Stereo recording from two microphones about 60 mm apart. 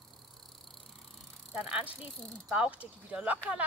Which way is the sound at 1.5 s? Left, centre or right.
Centre.